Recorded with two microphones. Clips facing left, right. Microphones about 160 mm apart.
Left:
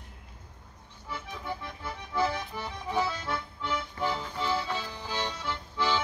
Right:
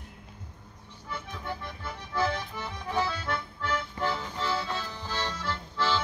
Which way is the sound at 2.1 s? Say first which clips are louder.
Even; 10° left (ahead or behind).